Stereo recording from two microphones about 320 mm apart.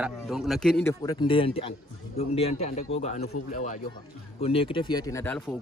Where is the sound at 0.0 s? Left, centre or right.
Centre.